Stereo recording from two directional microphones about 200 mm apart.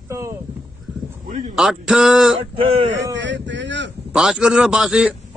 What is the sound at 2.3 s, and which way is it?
Speech, 30° right (ahead or behind).